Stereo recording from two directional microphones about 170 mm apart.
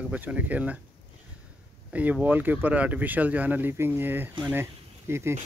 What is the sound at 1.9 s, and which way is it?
Speech, 10° right (ahead or behind).